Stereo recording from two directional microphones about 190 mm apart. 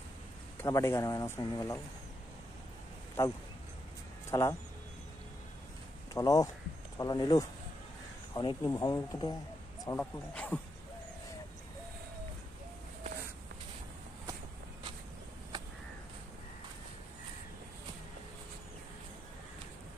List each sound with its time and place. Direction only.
0.6 s speech: 15° left (ahead or behind)
3.2 s speech: 15° left (ahead or behind)
6.1 s speech: 20° left (ahead or behind)